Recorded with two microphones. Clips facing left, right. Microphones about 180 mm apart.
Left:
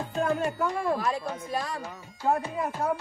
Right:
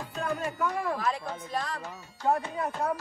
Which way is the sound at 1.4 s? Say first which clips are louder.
Left 2 dB; centre (ahead or behind).